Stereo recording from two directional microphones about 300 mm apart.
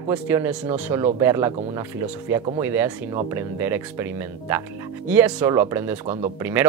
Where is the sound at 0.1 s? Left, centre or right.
Centre.